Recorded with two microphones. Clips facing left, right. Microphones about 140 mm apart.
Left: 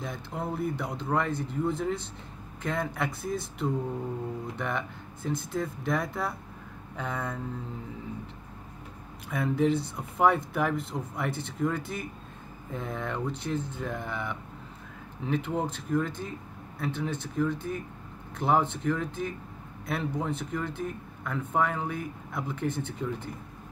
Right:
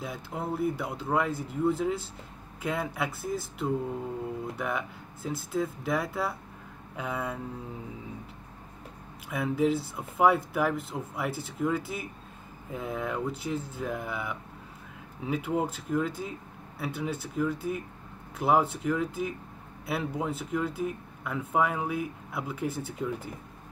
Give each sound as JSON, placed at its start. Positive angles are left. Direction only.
{"t": 0.0, "sound": "speech", "side_deg": -5}
{"t": 9.3, "sound": "speech", "side_deg": -5}